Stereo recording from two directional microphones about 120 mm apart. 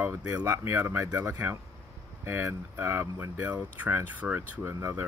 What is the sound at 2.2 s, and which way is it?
Speech, 20° right (ahead or behind).